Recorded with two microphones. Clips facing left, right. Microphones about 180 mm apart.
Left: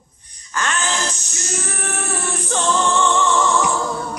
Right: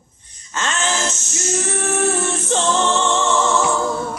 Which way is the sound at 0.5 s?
25° right (ahead or behind).